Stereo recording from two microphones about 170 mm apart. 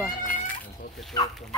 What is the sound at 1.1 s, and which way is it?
Speech, 25° left (ahead or behind).